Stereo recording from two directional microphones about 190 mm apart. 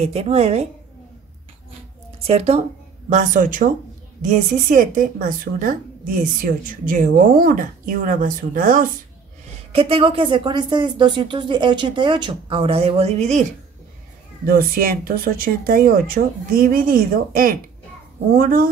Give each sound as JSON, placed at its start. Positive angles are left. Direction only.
{"t": 0.0, "sound": "a woman's voice", "side_deg": -35}
{"t": 2.2, "sound": "a woman's voice", "side_deg": -35}
{"t": 9.7, "sound": "a woman's voice", "side_deg": -30}
{"t": 14.4, "sound": "a woman's voice", "side_deg": -50}